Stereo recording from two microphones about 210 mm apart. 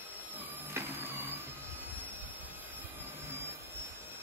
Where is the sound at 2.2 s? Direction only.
10° right (ahead or behind).